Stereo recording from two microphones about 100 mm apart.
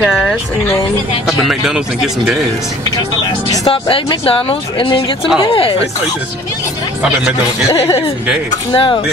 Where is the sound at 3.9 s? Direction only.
70° left (ahead or behind).